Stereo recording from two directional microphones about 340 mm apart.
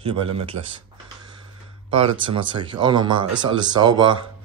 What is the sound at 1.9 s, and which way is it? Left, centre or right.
Speech, centre.